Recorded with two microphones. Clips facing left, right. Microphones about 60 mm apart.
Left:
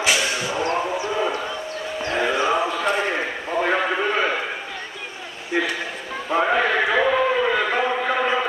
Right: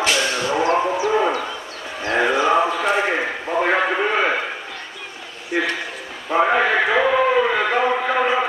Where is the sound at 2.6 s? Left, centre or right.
Centre.